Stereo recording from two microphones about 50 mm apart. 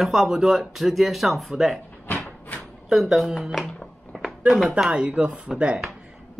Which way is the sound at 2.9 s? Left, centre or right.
Centre.